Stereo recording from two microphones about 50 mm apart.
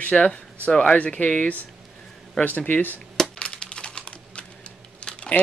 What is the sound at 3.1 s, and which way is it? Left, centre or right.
Computer keyboard, centre.